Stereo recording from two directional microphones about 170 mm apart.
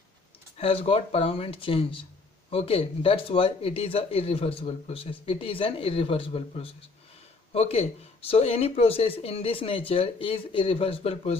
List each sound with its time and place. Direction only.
0.6 s speech: 35° left (ahead or behind)